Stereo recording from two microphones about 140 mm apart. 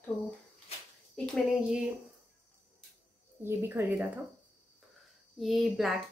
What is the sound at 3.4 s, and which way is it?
Speech, 15° right (ahead or behind).